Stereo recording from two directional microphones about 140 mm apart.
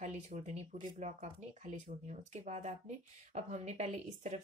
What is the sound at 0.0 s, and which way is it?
Speech, 60° right (ahead or behind).